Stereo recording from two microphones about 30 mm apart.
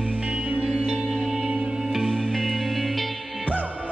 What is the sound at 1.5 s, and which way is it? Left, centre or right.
Music, right.